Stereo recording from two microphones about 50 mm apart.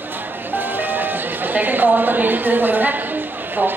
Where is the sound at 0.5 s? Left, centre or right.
Right.